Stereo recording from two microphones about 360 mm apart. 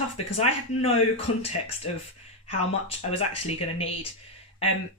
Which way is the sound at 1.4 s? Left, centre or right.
Centre.